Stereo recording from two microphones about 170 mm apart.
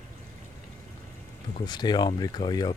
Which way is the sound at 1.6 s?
25° left (ahead or behind).